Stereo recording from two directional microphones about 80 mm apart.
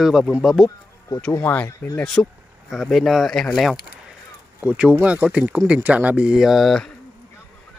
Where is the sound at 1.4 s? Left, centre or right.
Left.